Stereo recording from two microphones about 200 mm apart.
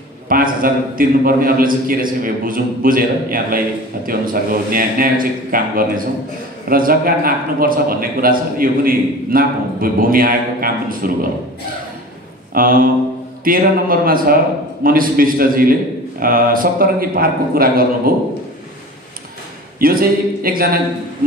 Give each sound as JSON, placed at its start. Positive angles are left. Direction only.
{"t": 0.3, "sound": "a man's voice", "side_deg": -45}
{"t": 12.5, "sound": "a man's voice", "side_deg": -45}
{"t": 19.8, "sound": "a man's voice", "side_deg": -45}